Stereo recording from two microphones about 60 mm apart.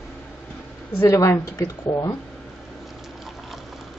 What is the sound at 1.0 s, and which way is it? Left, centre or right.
Speech, left.